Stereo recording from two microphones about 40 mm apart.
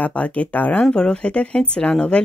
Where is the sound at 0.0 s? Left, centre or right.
Left.